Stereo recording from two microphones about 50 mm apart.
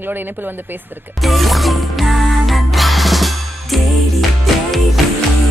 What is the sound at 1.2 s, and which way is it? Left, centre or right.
Music, centre.